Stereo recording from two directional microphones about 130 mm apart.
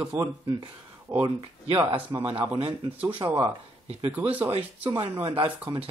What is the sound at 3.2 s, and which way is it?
Speech, 30° right (ahead or behind).